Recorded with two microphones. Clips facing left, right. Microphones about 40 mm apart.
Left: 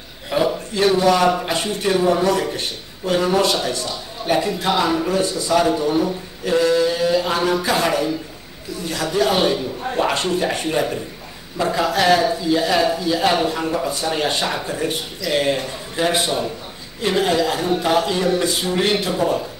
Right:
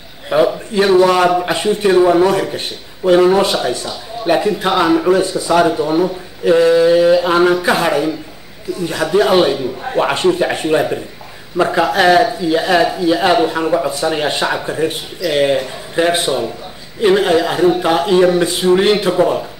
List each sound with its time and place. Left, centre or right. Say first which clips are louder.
0.3 s speech: right 6 dB; right
1.3 s a man's voice: right 7 dB; centre; by 7.7 s right
7.7 s a man's voice: right 4 dB; centre
11.5 s a man's voice: right 6 dB; right